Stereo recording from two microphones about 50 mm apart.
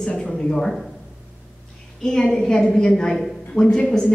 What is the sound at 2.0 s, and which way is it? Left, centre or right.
A woman's voice, centre.